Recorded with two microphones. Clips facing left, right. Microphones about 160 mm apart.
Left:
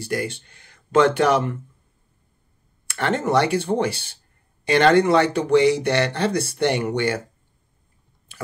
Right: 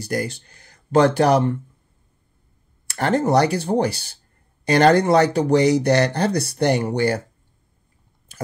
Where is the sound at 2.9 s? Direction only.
35° right (ahead or behind).